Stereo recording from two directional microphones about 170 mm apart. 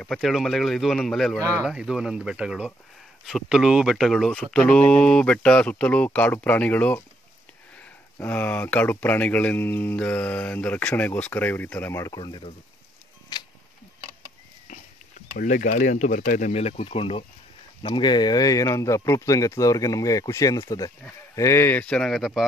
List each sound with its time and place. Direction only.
0.0 s speech: centre (ahead or behind)
1.4 s speech: 15° right (ahead or behind)
1.7 s speech: 5° right (ahead or behind)
8.2 s speech: 10° left (ahead or behind); by 12.5 s 30° left (ahead or behind)
13.3 s a sound: 25° left (ahead or behind)
15.3 s speech: 50° left (ahead or behind); by 22.5 s centre (ahead or behind)